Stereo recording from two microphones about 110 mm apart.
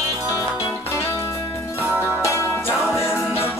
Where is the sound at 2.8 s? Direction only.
25° left (ahead or behind).